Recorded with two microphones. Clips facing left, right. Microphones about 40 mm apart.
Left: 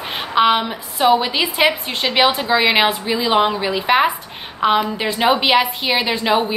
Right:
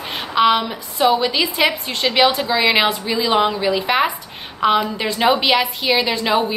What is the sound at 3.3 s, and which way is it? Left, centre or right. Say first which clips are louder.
Speech: left 1 dB; left.